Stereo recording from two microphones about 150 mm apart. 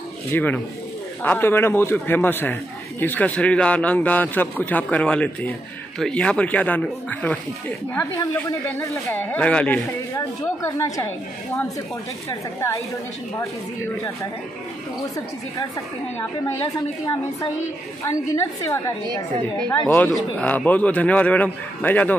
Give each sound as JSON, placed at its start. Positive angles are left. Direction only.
{"t": 0.3, "sound": "a man's voice", "side_deg": 10}
{"t": 12.3, "sound": "a woman's voice", "side_deg": 20}
{"t": 15.1, "sound": "a woman's voice", "side_deg": 20}